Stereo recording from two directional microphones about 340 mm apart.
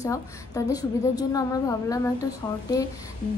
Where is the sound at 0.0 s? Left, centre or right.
Centre.